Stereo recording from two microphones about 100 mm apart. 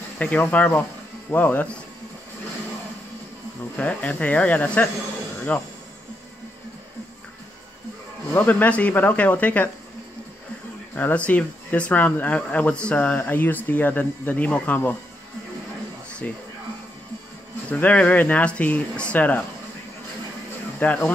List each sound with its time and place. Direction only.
0.2 s speech: 15° left (ahead or behind)
3.7 s speech: 15° left (ahead or behind)
8.4 s speech: 15° left (ahead or behind)
11.0 s speech: 15° left (ahead or behind)
17.6 s speech: 15° left (ahead or behind)
20.8 s speech: 15° left (ahead or behind)